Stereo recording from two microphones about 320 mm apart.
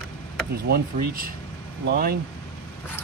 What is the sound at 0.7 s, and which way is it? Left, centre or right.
Speech, right.